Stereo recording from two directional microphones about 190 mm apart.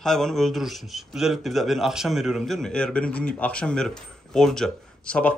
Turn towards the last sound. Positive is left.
turn(degrees=5)  # may be behind; listen again after turning